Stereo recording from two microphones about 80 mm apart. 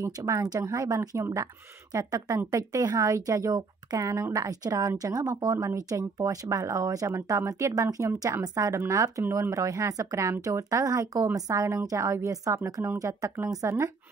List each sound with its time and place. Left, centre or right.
0.0 s a woman's voice: right